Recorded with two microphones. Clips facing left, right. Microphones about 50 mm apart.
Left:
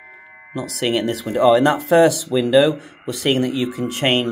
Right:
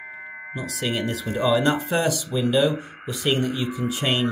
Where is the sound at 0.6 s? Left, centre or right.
Left.